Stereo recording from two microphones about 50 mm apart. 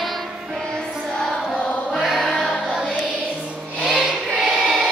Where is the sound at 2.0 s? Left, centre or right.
Centre.